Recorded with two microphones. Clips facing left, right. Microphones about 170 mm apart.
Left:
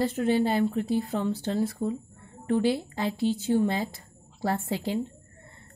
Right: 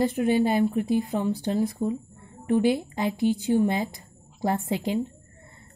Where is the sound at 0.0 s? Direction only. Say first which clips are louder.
Right 2 dB; 15° right (ahead or behind).